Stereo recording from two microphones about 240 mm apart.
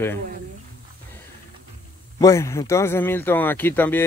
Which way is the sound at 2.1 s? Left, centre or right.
Centre.